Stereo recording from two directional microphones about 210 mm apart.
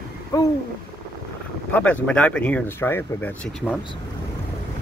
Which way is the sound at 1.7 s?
5° left (ahead or behind).